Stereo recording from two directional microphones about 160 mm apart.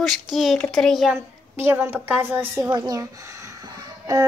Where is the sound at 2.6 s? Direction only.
25° right (ahead or behind).